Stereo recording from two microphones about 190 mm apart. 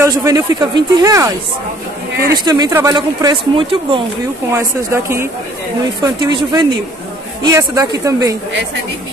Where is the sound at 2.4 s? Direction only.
20° right (ahead or behind).